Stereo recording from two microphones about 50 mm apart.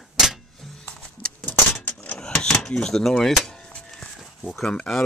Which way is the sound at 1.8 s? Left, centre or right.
Left.